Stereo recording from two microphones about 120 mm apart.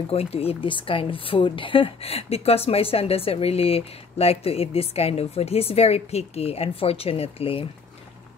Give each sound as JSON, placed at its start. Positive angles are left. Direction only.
{"t": 0.1, "sound": "a woman's voice", "side_deg": 55}